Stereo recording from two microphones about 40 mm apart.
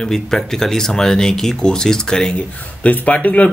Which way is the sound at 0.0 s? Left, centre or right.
Centre.